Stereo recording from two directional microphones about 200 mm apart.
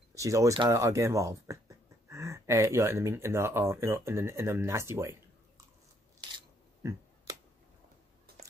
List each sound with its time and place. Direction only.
0.1 s speech: 15° right (ahead or behind)
6.3 s scissors: 15° right (ahead or behind)